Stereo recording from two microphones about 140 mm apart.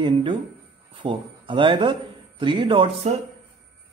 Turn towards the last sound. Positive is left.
turn(degrees=-40)  # may be behind; listen again after turning